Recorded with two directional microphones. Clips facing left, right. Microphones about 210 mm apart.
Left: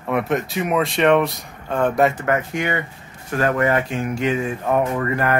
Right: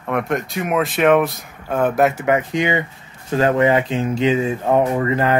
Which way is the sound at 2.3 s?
15° right (ahead or behind).